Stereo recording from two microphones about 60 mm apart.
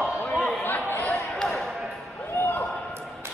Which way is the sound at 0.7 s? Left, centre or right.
Left.